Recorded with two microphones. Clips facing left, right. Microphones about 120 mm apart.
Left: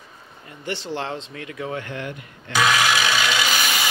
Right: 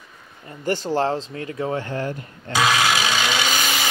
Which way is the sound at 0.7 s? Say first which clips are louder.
Right 7 dB; 40° right (ahead or behind).